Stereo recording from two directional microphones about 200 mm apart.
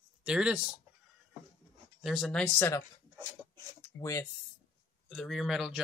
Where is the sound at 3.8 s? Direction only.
15° left (ahead or behind).